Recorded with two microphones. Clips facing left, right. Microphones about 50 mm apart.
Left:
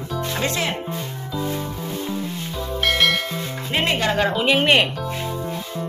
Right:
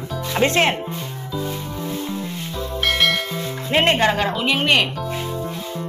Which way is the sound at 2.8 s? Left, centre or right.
Centre.